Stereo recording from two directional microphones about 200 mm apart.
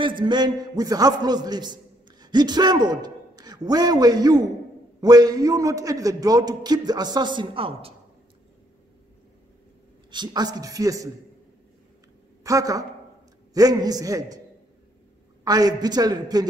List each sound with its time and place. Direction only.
0.0 s a man's voice: 25° right (ahead or behind)
10.1 s a man's voice: 20° right (ahead or behind)
12.4 s a man's voice: 15° right (ahead or behind)
15.4 s a man's voice: 20° right (ahead or behind)